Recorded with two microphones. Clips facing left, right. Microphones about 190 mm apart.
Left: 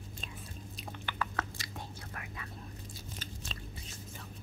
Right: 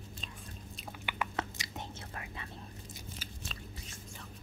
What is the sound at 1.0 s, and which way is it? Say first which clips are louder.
Chewing: right 1 dB; 15° right (ahead or behind).